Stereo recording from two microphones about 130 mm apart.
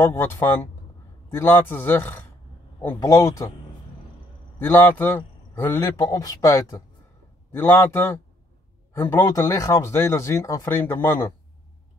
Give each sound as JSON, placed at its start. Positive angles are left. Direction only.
{"t": 0.0, "sound": "a man's voice", "side_deg": 15}
{"t": 4.6, "sound": "a man's voice", "side_deg": 15}
{"t": 5.8, "sound": "a man's voice", "side_deg": 30}